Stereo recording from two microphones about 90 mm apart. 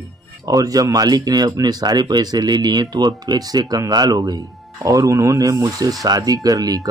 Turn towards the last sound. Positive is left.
turn(degrees=-40)  # may be behind; listen again after turning